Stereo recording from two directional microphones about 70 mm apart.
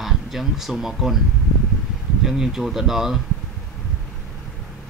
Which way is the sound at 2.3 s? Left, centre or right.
Centre.